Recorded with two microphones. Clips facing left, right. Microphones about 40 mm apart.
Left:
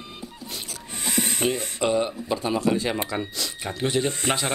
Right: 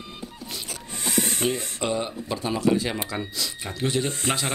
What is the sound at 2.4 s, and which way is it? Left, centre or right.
Speech, left.